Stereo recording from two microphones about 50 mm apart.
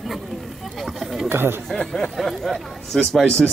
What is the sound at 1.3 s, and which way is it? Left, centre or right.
Chatter, right.